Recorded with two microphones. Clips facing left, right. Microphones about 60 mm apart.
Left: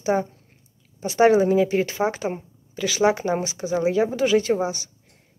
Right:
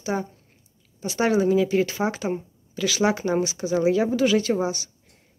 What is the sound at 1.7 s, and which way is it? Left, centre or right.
Speech, centre.